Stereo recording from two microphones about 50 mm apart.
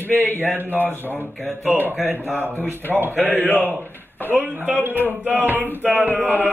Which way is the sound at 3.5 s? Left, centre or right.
Right.